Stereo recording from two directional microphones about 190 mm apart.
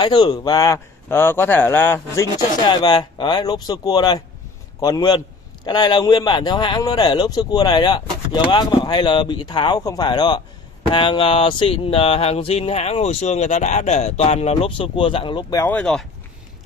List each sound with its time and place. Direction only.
0.0 s speech: 25° left (ahead or behind)
2.6 s speech: 20° left (ahead or behind)
10.9 s a sound: 25° left (ahead or behind)
15.7 s speech: 5° left (ahead or behind)